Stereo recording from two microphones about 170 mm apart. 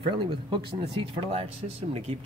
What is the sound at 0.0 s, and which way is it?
Speech, 30° right (ahead or behind).